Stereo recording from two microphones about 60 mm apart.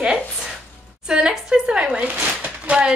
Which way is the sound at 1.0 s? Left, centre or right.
Centre.